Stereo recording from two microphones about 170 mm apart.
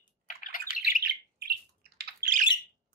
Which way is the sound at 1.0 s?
70° right (ahead or behind).